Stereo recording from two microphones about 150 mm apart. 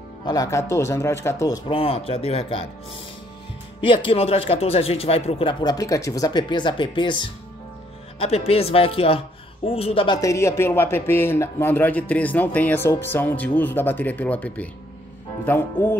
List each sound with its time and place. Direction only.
0.3 s speech: 20° left (ahead or behind)
1.7 s speech: 40° left (ahead or behind)
3.8 s speech: 35° left (ahead or behind); by 16.0 s 15° left (ahead or behind)